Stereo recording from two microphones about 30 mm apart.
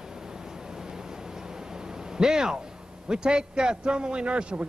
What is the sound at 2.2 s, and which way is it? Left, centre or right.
A man's voice, right.